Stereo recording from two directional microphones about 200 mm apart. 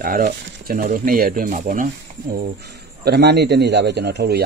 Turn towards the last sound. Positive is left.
turn(degrees=-55)  # may be behind; listen again after turning